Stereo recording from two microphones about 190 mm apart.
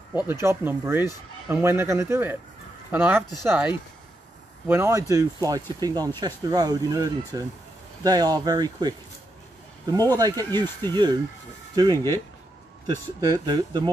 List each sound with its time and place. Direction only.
0.3 s speech: 10° right (ahead or behind)
10.1 s speech: 20° right (ahead or behind)